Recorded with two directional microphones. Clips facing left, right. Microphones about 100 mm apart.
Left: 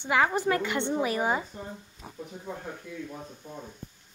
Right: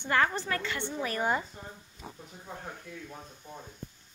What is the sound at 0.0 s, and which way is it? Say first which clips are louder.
Speech: left 3 dB; 10° left (ahead or behind).